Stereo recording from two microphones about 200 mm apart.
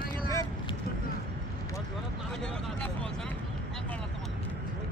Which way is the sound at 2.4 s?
5° left (ahead or behind).